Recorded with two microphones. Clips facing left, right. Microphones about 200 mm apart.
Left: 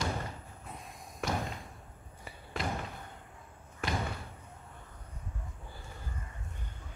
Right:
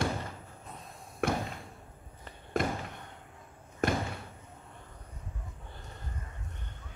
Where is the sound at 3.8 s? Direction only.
45° right (ahead or behind).